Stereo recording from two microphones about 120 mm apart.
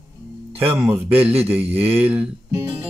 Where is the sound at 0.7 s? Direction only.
20° right (ahead or behind).